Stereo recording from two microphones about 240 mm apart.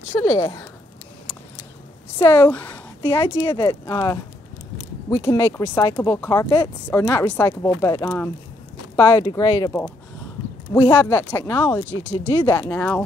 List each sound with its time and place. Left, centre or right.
0.2 s speech: centre
2.1 s speech: centre
3.0 s speech: centre
11.8 s speech: centre
12.3 s speech: centre